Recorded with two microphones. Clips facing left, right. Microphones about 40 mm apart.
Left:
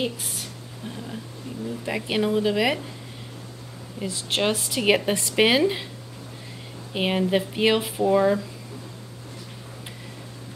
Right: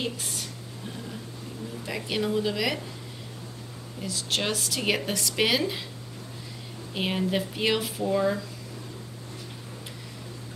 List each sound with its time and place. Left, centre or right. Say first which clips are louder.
1.9 s a woman's voice: left 4 dB; left
4.0 s a woman's voice: left 5 dB; left
6.9 s speech: left 5 dB; centre